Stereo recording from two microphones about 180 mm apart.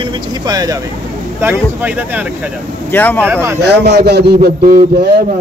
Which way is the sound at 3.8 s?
65° right (ahead or behind).